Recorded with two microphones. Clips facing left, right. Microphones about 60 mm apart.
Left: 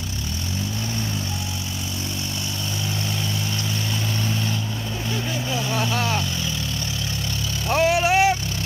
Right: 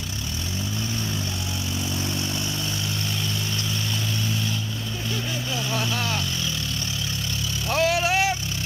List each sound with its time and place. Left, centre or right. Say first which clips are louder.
5.8 s vehicle: left 4 dB; left
7.7 s vehicle: left 3 dB; left